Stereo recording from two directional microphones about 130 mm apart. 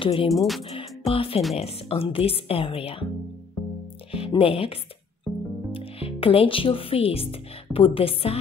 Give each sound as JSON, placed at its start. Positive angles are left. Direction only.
{"t": 0.0, "sound": "speech", "side_deg": 40}
{"t": 0.3, "sound": "music", "side_deg": 0}
{"t": 0.6, "sound": "music", "side_deg": 45}
{"t": 1.6, "sound": "speech", "side_deg": 45}
{"t": 4.1, "sound": "speech", "side_deg": 45}